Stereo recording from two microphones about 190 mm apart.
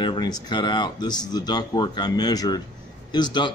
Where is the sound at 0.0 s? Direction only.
25° left (ahead or behind).